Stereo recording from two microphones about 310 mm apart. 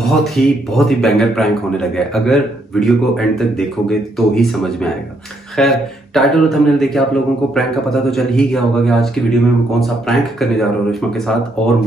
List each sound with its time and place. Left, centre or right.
0.0 s a man's voice: centre